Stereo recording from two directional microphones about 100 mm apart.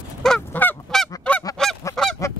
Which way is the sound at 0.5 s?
20° left (ahead or behind).